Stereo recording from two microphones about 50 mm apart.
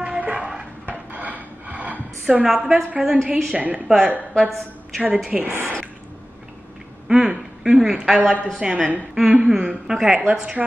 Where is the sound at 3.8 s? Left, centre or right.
Centre.